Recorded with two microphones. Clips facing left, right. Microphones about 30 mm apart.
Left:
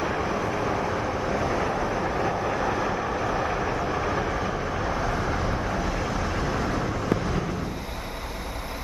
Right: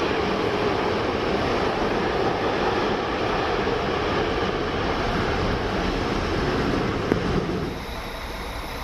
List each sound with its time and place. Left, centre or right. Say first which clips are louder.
0.0 s vehicle: right 3 dB; right